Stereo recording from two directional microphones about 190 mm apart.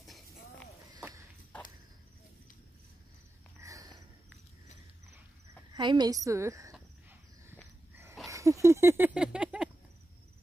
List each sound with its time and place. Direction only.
0.9 s walk: 15° right (ahead or behind)
3.6 s sniff: 15° right (ahead or behind)
5.7 s a woman's voice: 25° right (ahead or behind)
6.7 s cricket: 10° right (ahead or behind)
7.9 s a sound: 10° right (ahead or behind)